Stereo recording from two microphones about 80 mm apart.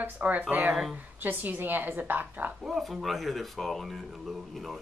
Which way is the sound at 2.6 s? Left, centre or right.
Centre.